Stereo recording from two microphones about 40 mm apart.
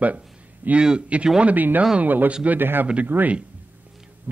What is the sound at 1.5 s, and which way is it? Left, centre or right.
A man's voice, right.